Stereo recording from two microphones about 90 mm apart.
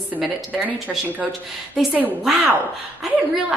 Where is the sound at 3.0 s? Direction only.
5° right (ahead or behind).